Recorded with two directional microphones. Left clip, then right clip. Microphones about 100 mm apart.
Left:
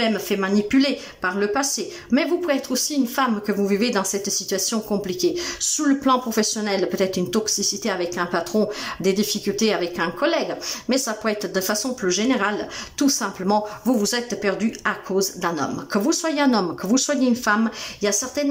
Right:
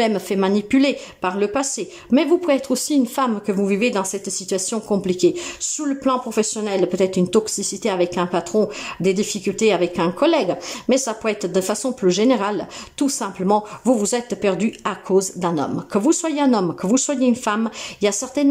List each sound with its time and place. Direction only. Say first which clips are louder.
0.0 s speech: right 3 dB; 45° right (ahead or behind)
5.7 s speech: left 2 dB; 20° right (ahead or behind); by 12.1 s 40° right (ahead or behind)
12.1 s speech: right 4 dB; 55° right (ahead or behind); by 13.9 s 30° right (ahead or behind)
13.9 s speech: right 1 dB; 40° right (ahead or behind)